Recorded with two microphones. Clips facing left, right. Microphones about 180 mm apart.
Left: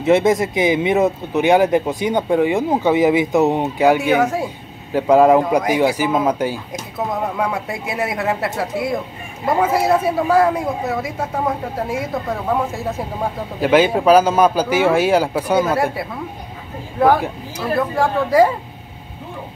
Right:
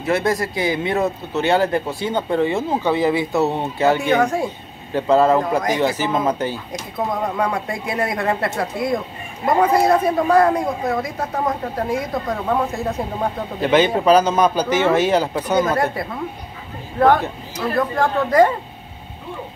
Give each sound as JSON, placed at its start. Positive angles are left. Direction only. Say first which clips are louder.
{"t": 0.0, "sound": "a man's voice", "louder": "left 5 dB", "side_deg": 20}